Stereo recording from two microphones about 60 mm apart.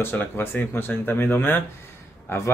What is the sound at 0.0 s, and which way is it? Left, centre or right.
A man's voice, left.